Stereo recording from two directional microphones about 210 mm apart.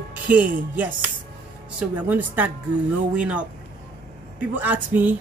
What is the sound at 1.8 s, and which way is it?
Speech, 5° right (ahead or behind).